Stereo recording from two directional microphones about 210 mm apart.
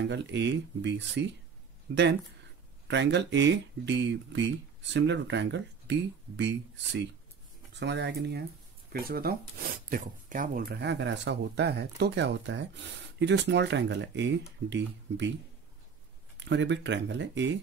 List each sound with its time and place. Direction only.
0.0 s speech: 55° right (ahead or behind)
2.9 s speech: 55° right (ahead or behind)
16.4 s speech: 55° right (ahead or behind)